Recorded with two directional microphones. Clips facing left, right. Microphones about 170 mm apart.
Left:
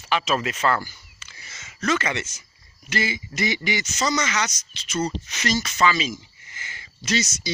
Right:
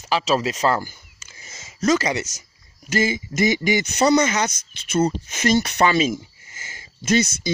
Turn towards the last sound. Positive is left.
turn(degrees=-55)  # may be behind; listen again after turning